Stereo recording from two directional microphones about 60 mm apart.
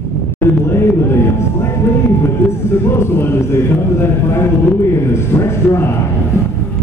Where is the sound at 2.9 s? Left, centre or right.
Left.